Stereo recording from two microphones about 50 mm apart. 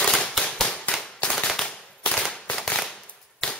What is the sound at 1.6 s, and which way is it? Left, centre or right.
Machine gun, centre.